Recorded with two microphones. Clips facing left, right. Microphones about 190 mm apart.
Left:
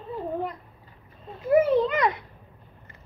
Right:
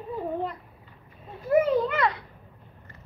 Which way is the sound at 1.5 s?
15° left (ahead or behind).